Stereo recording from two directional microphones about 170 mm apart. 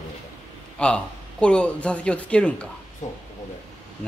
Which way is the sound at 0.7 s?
5° left (ahead or behind).